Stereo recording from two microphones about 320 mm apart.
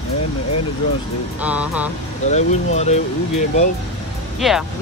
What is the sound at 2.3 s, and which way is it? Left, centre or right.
Speech, left.